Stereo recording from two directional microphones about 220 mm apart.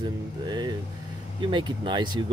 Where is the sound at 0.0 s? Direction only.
20° right (ahead or behind).